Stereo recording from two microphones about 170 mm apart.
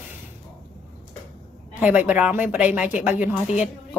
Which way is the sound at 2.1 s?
10° right (ahead or behind).